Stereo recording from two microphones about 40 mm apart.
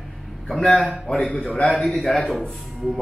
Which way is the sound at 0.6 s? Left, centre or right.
Centre.